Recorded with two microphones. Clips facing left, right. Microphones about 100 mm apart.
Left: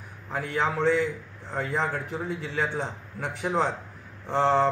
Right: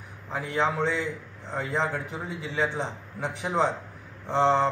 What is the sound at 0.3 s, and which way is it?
A man's voice, 15° right (ahead or behind).